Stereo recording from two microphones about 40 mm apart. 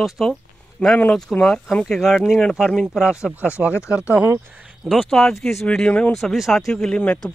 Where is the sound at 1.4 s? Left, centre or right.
Centre.